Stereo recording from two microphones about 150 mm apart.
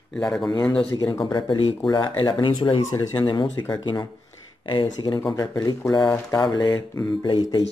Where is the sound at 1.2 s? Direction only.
30° left (ahead or behind).